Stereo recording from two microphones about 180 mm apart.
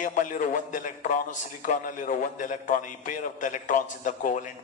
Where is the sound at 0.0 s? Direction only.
45° left (ahead or behind).